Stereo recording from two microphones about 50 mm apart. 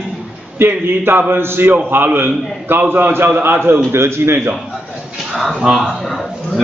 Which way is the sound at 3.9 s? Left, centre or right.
Right.